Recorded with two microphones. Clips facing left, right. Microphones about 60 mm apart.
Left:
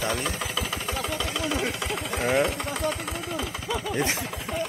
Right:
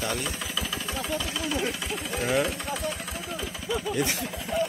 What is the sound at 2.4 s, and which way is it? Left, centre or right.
Engine, left.